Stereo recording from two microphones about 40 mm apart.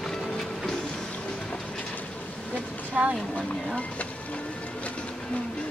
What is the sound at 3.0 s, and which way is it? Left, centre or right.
Speech, right.